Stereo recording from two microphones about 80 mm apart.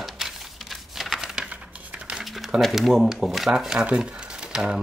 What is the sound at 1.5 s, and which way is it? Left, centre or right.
Crumpling, centre.